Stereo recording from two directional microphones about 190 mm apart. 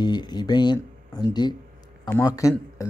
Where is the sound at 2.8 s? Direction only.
15° left (ahead or behind).